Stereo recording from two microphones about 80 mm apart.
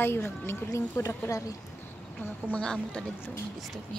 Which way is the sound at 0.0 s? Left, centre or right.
Left.